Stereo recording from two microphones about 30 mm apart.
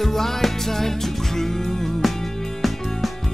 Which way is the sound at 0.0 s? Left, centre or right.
Centre.